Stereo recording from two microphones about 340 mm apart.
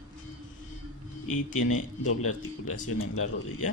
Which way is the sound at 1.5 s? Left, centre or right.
Left.